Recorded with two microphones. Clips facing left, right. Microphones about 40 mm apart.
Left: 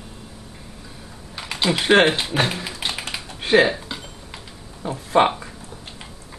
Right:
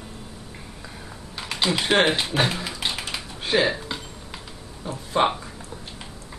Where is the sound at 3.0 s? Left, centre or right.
Centre.